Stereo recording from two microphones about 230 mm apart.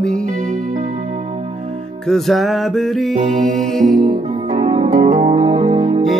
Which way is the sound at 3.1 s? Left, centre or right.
Right.